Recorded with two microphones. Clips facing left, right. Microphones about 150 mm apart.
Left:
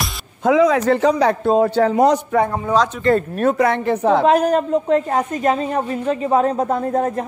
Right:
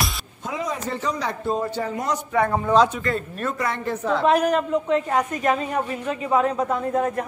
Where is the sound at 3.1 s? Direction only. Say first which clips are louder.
Left 10 dB; 60° left (ahead or behind).